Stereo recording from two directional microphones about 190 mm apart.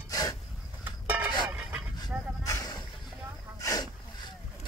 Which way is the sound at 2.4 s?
15° left (ahead or behind).